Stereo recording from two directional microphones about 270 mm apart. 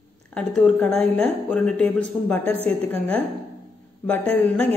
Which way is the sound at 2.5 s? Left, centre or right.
Right.